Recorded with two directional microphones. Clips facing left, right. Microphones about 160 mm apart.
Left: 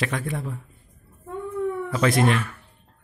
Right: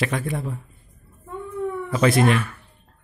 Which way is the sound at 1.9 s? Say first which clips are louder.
Right 3 dB; 5° right (ahead or behind).